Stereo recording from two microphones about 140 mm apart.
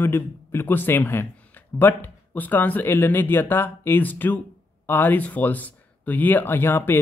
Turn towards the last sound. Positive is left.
turn(degrees=15)  # may be behind; listen again after turning